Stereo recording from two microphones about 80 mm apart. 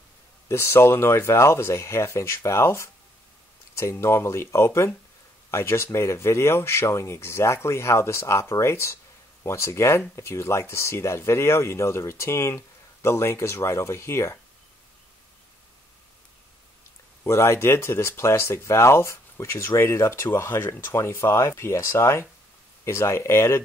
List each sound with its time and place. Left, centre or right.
0.5 s speech: left
17.2 s speech: left